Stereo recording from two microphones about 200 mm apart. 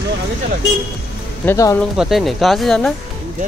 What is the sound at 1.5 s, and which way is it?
Speech, 15° left (ahead or behind).